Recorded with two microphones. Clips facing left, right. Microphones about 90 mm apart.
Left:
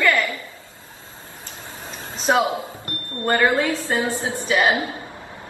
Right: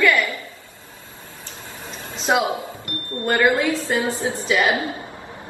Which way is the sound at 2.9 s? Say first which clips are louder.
Left 1 dB; 30° left (ahead or behind).